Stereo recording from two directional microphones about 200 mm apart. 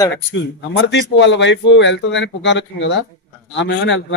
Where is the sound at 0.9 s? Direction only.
60° left (ahead or behind).